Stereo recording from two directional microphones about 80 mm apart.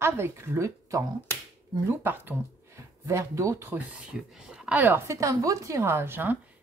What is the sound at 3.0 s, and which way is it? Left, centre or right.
Speech, right.